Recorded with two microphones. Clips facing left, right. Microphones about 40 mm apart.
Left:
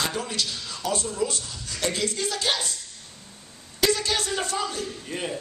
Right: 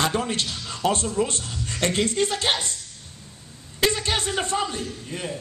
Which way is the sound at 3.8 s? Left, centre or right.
Right.